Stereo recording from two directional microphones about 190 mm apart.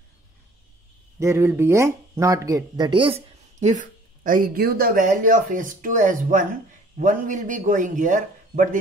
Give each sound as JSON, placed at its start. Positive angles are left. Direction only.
{"t": 1.2, "sound": "speech", "side_deg": -15}